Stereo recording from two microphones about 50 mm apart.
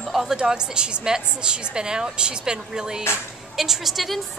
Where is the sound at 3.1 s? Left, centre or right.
Left.